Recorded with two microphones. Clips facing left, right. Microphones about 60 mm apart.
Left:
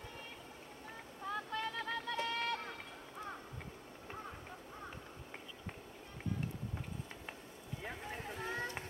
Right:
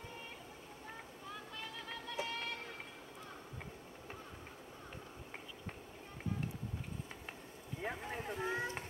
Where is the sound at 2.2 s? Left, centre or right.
Centre.